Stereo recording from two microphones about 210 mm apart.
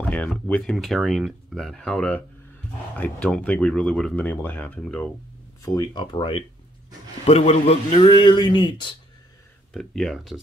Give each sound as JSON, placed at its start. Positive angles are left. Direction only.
{"t": 0.1, "sound": "speech", "side_deg": 5}
{"t": 5.7, "sound": "a man's voice", "side_deg": 20}
{"t": 9.7, "sound": "speech", "side_deg": 0}